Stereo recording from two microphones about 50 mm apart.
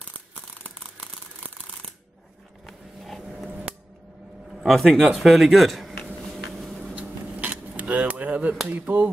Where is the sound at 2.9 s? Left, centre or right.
Centre.